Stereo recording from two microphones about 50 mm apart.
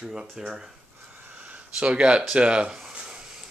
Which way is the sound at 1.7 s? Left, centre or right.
Centre.